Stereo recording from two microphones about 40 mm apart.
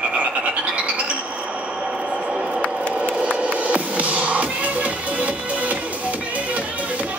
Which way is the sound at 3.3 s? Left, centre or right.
Right.